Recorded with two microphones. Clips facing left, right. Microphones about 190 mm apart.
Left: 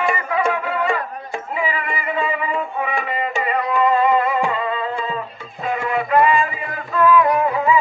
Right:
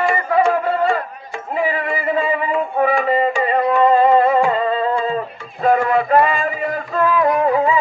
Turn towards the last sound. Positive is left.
turn(degrees=-35)  # may be behind; listen again after turning